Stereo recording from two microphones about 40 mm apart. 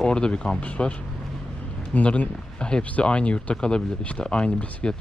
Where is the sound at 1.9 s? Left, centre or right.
Left.